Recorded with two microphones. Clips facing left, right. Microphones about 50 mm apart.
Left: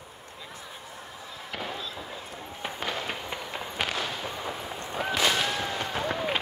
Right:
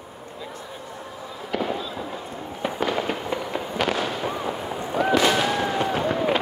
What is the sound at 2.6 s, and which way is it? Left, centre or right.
Fireworks, centre.